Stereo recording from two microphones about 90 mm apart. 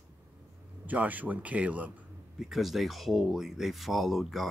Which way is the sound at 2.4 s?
Centre (ahead or behind).